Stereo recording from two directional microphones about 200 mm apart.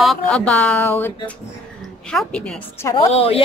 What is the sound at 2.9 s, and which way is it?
Speech, 30° left (ahead or behind).